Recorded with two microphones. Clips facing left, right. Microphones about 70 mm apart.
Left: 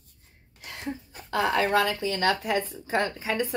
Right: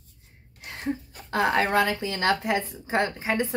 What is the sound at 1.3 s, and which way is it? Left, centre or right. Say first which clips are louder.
A woman's voice: right 1 dB; right.